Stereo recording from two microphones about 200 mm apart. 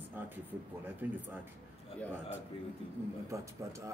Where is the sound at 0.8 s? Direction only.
10° right (ahead or behind).